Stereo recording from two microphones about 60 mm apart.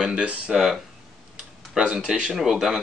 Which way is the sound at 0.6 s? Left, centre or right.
Centre.